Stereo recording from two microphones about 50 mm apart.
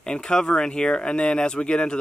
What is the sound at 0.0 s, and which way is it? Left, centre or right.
Speech, centre.